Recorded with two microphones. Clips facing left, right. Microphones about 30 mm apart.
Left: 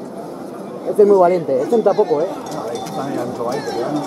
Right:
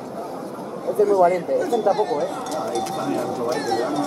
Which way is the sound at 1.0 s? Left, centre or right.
Left.